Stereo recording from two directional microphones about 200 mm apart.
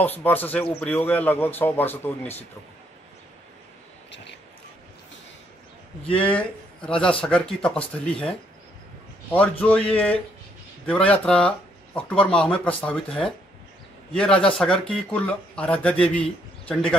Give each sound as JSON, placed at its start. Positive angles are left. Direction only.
{"t": 0.0, "sound": "a man's voice", "side_deg": 10}
{"t": 4.1, "sound": "a sound", "side_deg": 60}
{"t": 6.2, "sound": "a man's voice", "side_deg": 5}